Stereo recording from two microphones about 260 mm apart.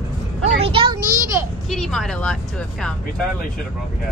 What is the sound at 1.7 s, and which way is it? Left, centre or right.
Vehicle, centre.